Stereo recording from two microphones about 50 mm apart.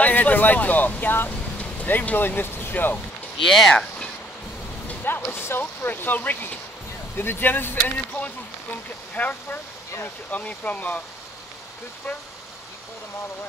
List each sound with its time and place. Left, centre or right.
0.0 s speech: left
3.4 s speech: centre
5.0 s speech: left
7.8 s speech: left